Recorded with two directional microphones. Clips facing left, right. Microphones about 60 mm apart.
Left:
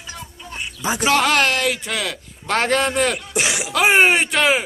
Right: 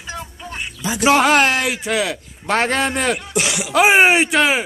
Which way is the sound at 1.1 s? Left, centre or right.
Centre.